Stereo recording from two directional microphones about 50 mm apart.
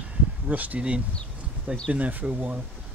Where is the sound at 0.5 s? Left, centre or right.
Right.